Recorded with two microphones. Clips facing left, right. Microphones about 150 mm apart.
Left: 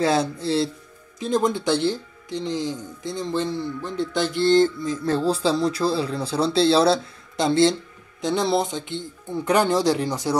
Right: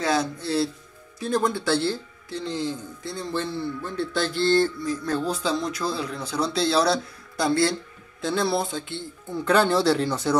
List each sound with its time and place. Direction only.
0.0 s speech: 30° left (ahead or behind)